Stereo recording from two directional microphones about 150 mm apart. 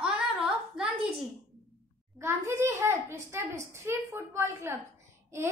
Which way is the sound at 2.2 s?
15° right (ahead or behind).